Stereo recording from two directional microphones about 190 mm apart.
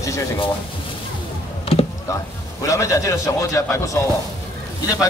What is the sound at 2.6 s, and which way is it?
A man's voice, 15° left (ahead or behind).